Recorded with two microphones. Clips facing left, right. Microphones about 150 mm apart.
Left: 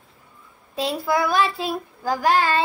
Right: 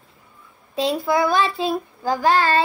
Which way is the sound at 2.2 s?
10° left (ahead or behind).